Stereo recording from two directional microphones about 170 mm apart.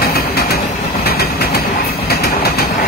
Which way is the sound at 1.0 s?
65° left (ahead or behind).